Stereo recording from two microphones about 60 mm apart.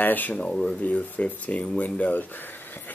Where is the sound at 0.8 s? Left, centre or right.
Left.